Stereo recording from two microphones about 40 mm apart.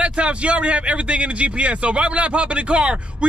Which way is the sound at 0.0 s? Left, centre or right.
Right.